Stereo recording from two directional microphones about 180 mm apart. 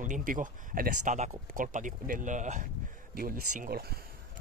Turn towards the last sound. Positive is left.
turn(degrees=-55)  # may be behind; listen again after turning